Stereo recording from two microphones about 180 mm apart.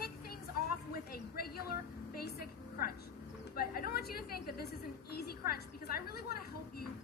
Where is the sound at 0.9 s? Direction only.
60° left (ahead or behind).